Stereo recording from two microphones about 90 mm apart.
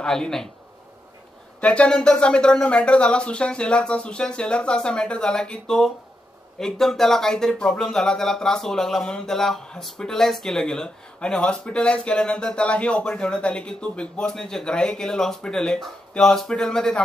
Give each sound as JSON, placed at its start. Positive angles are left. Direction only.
{"t": 0.0, "sound": "speech", "side_deg": 5}
{"t": 1.6, "sound": "speech", "side_deg": 10}